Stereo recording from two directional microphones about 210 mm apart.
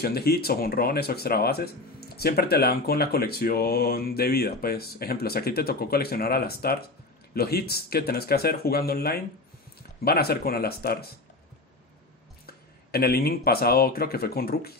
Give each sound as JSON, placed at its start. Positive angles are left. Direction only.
{"t": 0.0, "sound": "speech", "side_deg": 50}
{"t": 12.4, "sound": "speech", "side_deg": 45}